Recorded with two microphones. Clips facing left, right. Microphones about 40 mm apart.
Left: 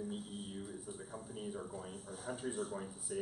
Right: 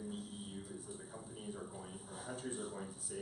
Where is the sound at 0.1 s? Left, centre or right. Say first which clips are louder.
Left 2 dB; centre.